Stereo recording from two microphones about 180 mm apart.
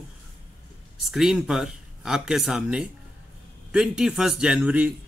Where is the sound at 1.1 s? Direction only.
Centre (ahead or behind).